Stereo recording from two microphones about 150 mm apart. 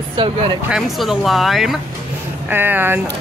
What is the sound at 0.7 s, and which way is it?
Speech, centre (ahead or behind).